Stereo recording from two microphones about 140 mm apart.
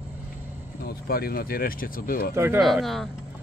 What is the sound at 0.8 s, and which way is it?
Speech, 90° left.